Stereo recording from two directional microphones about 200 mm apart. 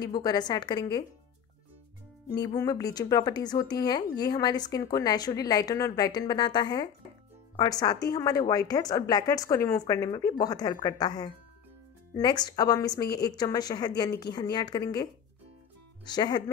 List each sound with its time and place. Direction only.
0.0 s a woman's voice: 20° left (ahead or behind)
2.4 s a woman's voice: 20° left (ahead or behind)
16.1 s a woman's voice: 20° left (ahead or behind)